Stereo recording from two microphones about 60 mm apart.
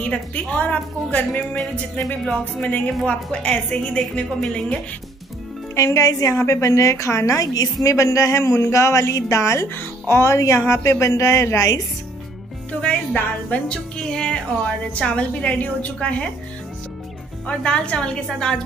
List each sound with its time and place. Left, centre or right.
0.0 s a woman's voice: left
2.6 s a woman's voice: left
5.8 s speech: left
6.3 s a woman's voice: left
12.8 s a woman's voice: left
13.7 s a woman's voice: centre
17.5 s a woman's voice: centre